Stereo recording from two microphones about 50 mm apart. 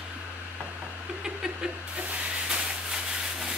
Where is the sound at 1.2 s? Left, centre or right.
Centre.